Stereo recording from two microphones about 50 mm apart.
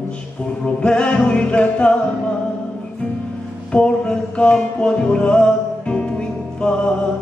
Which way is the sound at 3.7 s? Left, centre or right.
Centre.